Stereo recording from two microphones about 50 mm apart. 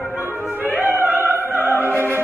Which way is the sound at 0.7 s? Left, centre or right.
Right.